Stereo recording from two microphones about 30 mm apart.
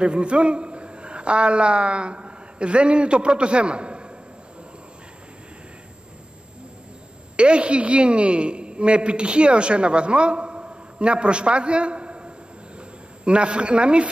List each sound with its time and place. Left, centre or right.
0.0 s a man's voice: right
7.3 s a woman's voice: right